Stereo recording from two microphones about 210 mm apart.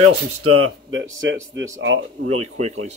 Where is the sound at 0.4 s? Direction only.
90° right.